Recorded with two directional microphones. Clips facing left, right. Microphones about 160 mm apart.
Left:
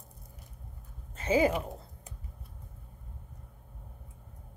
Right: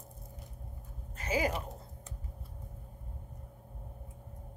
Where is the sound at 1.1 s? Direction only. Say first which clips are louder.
Left 6 dB; 25° left (ahead or behind).